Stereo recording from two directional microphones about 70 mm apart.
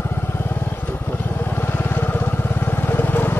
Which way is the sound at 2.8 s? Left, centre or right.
Left.